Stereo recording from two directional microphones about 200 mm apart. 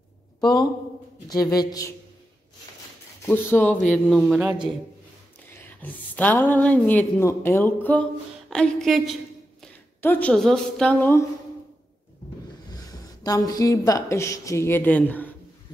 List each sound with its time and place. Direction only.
1.3 s a woman's voice: 20° left (ahead or behind)
3.3 s a woman's voice: 10° left (ahead or behind)
5.8 s a woman's voice: 10° left (ahead or behind)
12.6 s speech: 20° left (ahead or behind)